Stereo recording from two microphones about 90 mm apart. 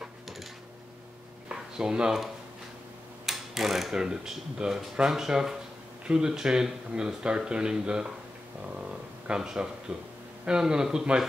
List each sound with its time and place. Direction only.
1.5 s speech: 10° right (ahead or behind)
3.3 s speech: 5° right (ahead or behind)
8.7 s a sound: 10° right (ahead or behind)
10.4 s speech: 10° right (ahead or behind)